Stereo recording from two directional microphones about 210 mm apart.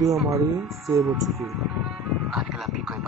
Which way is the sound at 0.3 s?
15° right (ahead or behind).